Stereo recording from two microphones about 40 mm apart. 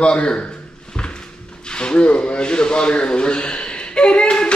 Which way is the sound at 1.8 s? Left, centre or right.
Left.